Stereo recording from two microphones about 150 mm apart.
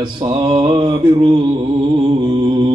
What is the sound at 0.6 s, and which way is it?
Mantra, 35° right (ahead or behind).